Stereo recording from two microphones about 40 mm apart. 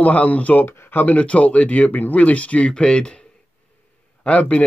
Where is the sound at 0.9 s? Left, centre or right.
Left.